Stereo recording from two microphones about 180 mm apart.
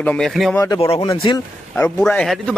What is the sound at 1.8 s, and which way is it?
Speech, 5° left (ahead or behind).